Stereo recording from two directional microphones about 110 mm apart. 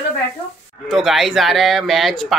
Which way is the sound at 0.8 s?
Centre (ahead or behind).